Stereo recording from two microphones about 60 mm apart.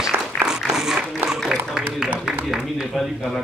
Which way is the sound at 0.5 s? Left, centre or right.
Centre.